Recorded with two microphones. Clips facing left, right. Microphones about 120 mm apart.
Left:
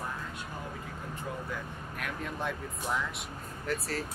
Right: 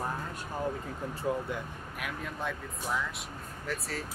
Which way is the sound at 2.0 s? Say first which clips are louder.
Left 1 dB; centre (ahead or behind).